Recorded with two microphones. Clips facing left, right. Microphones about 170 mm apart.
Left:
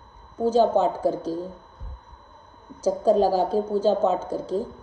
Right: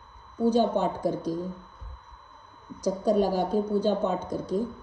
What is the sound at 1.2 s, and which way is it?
Speech, 15° right (ahead or behind).